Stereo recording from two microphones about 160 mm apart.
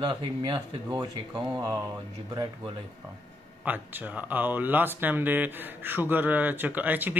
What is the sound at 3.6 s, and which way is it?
Speech, 10° right (ahead or behind).